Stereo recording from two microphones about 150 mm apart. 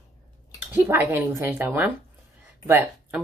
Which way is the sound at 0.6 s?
10° right (ahead or behind).